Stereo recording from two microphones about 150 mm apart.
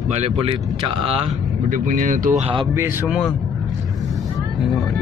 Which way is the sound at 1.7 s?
60° right (ahead or behind).